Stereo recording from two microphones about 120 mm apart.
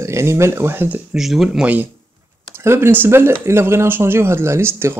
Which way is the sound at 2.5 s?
20° right (ahead or behind).